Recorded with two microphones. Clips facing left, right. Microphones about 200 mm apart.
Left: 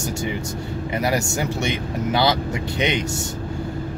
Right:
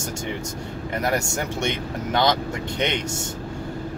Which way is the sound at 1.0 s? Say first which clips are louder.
Left 2 dB; 5° left (ahead or behind).